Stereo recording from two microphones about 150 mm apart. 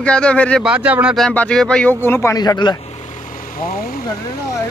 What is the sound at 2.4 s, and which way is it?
Speech, 25° left (ahead or behind).